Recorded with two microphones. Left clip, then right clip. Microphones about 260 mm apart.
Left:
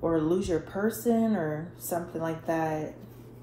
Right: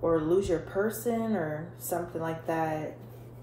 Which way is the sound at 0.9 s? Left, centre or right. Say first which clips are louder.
Left 3 dB; left.